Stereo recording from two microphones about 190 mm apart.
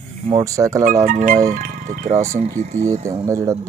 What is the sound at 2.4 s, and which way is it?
Speech, 35° right (ahead or behind).